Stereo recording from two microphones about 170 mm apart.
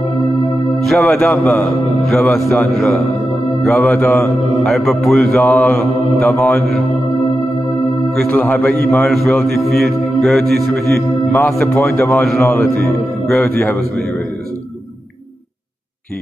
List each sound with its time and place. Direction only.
0.7 s a man's voice: 5° left (ahead or behind)
8.1 s a man's voice: 5° left (ahead or behind)
9.8 s mantra: centre (ahead or behind)
11.3 s a man's voice: 5° left (ahead or behind)